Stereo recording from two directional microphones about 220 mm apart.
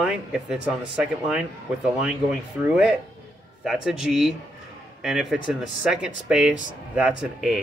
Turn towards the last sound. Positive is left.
turn(degrees=0)  # may be behind; listen again after turning